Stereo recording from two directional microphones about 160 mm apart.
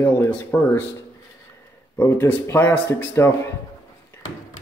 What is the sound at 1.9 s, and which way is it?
Speech, 15° left (ahead or behind).